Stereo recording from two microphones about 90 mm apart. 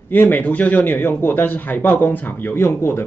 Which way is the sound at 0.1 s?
20° left (ahead or behind).